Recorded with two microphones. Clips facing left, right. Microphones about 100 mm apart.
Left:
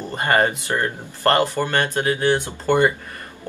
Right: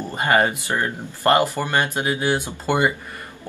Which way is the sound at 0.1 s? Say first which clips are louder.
Even; 15° right (ahead or behind).